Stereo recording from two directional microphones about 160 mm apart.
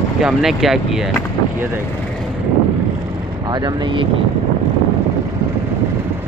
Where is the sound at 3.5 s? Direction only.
25° right (ahead or behind).